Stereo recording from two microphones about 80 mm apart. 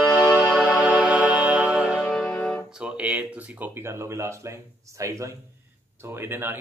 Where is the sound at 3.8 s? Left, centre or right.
Right.